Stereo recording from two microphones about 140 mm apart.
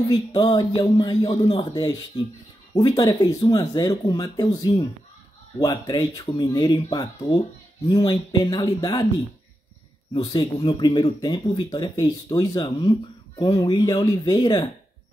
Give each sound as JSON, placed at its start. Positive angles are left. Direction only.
{"t": 0.1, "sound": "speech", "side_deg": 30}
{"t": 10.1, "sound": "speech", "side_deg": 30}